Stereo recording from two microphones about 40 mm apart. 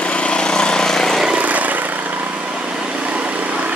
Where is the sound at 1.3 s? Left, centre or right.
Right.